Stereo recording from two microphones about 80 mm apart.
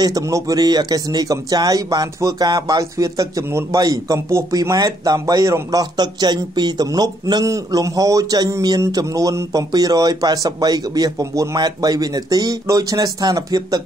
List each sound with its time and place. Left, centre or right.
0.0 s speech: right
4.6 s speech: right
7.4 s speech: right